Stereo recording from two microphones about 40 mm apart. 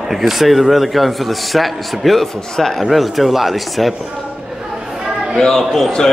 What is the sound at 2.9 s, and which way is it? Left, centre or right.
A man's voice, centre.